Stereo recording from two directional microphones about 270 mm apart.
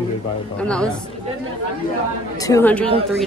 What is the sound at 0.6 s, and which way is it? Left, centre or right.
Speech, centre.